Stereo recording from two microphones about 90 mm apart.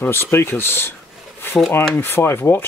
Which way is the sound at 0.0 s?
25° left (ahead or behind).